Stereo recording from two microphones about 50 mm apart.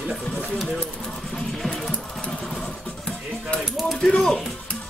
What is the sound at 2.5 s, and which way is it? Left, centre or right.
Music, left.